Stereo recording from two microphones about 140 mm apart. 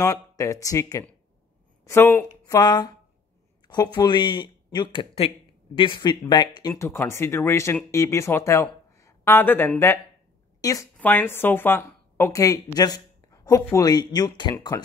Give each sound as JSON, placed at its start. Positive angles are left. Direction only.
{"t": 0.0, "sound": "speech", "side_deg": 25}
{"t": 2.4, "sound": "speech", "side_deg": 30}
{"t": 6.7, "sound": "speech", "side_deg": 15}
{"t": 11.0, "sound": "a woman's voice", "side_deg": 15}